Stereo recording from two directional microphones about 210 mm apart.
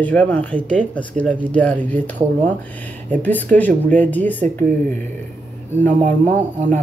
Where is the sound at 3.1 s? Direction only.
10° left (ahead or behind).